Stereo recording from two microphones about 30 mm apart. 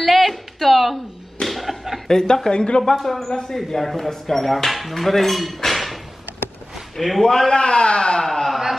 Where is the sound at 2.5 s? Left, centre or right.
Left.